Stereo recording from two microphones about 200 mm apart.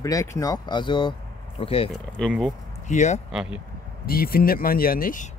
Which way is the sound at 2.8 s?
35° left (ahead or behind).